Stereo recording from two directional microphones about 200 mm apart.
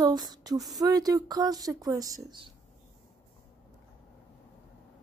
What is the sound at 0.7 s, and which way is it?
Speech, 20° right (ahead or behind).